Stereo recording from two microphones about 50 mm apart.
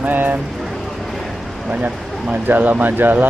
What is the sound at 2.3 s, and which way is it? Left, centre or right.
Speech, right.